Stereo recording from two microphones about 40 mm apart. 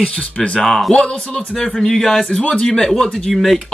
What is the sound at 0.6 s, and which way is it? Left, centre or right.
Speech, centre.